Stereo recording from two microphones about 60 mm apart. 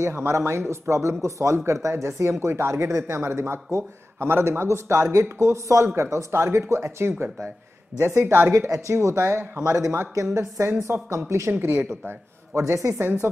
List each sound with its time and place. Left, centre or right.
0.0 s a man's voice: right
8.6 s a man's voice: right
12.1 s speech: right
12.9 s a woman's voice: right